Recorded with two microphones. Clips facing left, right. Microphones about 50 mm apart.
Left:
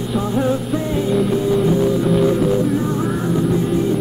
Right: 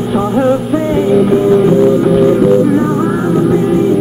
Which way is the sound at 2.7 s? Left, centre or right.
Right.